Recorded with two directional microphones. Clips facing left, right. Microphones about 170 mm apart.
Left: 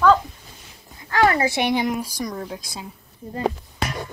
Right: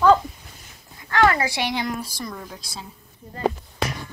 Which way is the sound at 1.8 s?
15° left (ahead or behind).